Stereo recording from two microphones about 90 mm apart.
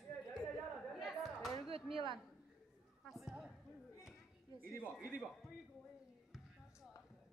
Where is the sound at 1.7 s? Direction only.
90° right.